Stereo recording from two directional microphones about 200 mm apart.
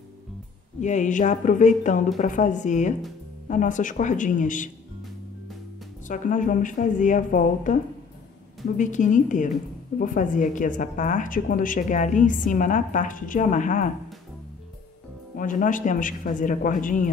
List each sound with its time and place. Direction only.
0.7 s a woman's voice: 35° left (ahead or behind)
6.0 s a woman's voice: 40° left (ahead or behind)
8.7 s a woman's voice: 40° left (ahead or behind)
15.3 s a woman's voice: 40° left (ahead or behind)